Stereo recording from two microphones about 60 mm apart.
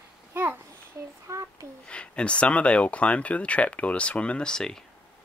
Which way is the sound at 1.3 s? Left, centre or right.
Right.